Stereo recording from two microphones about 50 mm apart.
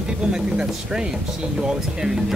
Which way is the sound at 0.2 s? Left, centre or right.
Centre.